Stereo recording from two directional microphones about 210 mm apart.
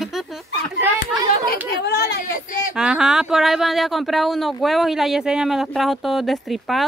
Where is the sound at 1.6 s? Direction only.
50° left (ahead or behind).